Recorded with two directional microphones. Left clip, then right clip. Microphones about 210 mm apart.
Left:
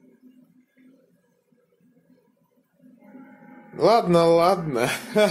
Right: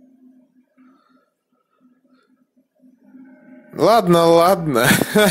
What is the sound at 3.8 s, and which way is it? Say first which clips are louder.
Speech: right 4 dB; 40° right (ahead or behind).